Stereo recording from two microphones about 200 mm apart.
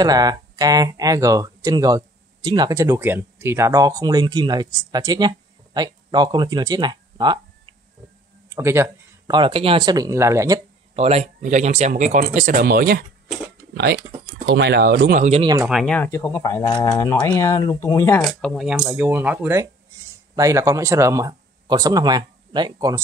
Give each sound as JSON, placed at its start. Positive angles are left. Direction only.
{"t": 0.0, "sound": "speech", "side_deg": -20}
{"t": 8.5, "sound": "a sound", "side_deg": -15}
{"t": 9.4, "sound": "speech", "side_deg": -25}
{"t": 11.0, "sound": "speech", "side_deg": -30}
{"t": 14.4, "sound": "speech", "side_deg": -60}
{"t": 15.6, "sound": "speech", "side_deg": 0}
{"t": 18.2, "sound": "speech", "side_deg": 0}